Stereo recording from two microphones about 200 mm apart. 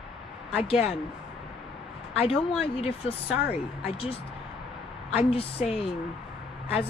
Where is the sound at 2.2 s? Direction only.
30° left (ahead or behind).